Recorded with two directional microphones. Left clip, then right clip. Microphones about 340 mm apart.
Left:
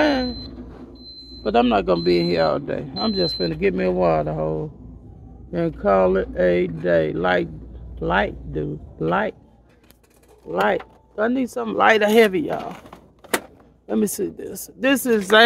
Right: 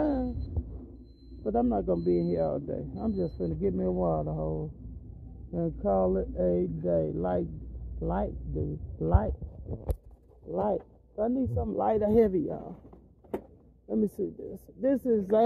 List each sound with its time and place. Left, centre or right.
0.0 s a sound: left
1.4 s speech: left
10.5 s speech: left
13.8 s speech: left